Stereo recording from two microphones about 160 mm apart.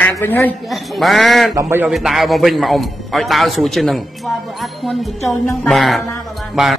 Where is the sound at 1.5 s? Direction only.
15° right (ahead or behind).